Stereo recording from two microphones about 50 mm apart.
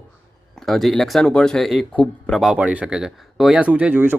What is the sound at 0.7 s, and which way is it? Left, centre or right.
Speech, centre.